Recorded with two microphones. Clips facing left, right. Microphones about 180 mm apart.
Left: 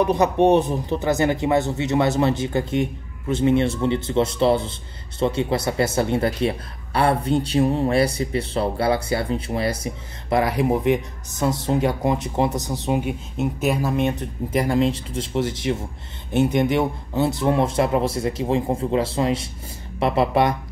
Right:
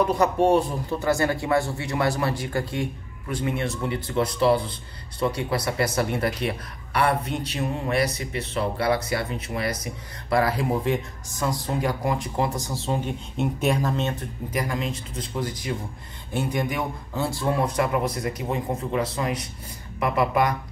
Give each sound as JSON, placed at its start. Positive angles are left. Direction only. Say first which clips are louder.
{"t": 0.0, "sound": "speech", "louder": "left 3 dB", "side_deg": 20}
{"t": 10.3, "sound": "speech", "louder": "left 3 dB", "side_deg": 20}
{"t": 13.4, "sound": "speech", "louder": "left 1 dB", "side_deg": 5}
{"t": 14.6, "sound": "speech", "louder": "left 9 dB", "side_deg": 30}